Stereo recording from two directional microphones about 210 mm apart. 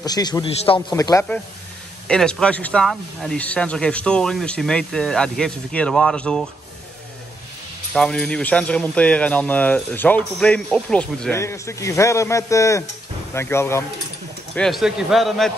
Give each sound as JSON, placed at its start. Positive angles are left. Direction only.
{"t": 0.0, "sound": "a man's voice", "side_deg": 20}
{"t": 2.0, "sound": "speech", "side_deg": 5}
{"t": 7.9, "sound": "speech", "side_deg": 5}
{"t": 14.5, "sound": "speech", "side_deg": 0}